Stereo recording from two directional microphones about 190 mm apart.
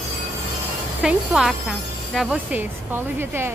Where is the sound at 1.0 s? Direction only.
5° right (ahead or behind).